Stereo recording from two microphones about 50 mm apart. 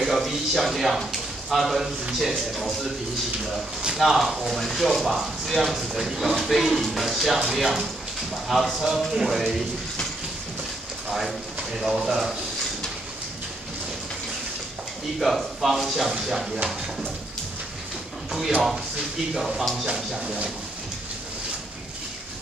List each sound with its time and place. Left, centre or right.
0.0 s speech: centre
4.0 s speech: centre
11.1 s speech: centre
15.1 s speech: centre
18.9 s speech: centre
20.2 s speech: centre